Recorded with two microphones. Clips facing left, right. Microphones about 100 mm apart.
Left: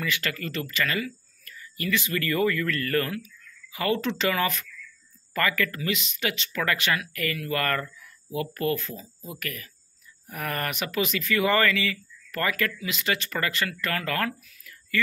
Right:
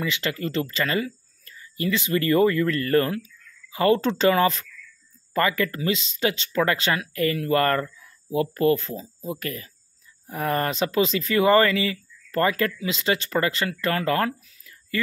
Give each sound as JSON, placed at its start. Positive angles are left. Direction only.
{"t": 0.0, "sound": "speech", "side_deg": -25}